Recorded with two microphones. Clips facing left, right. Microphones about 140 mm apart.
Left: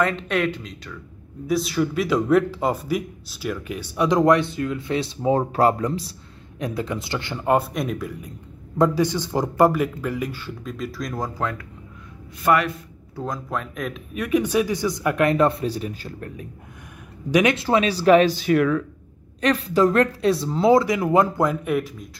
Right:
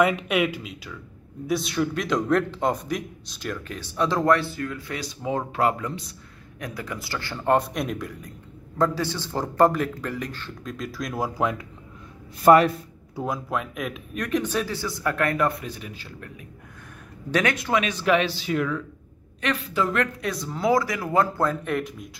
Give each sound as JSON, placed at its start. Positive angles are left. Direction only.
{"t": 0.0, "sound": "a man's voice", "side_deg": -10}
{"t": 7.4, "sound": "speech", "side_deg": 5}
{"t": 8.7, "sound": "a man's voice", "side_deg": 15}
{"t": 12.4, "sound": "speech", "side_deg": -35}
{"t": 13.1, "sound": "a man's voice", "side_deg": -10}
{"t": 17.3, "sound": "a man's voice", "side_deg": 15}
{"t": 17.6, "sound": "speech", "side_deg": 30}
{"t": 19.4, "sound": "speech", "side_deg": 35}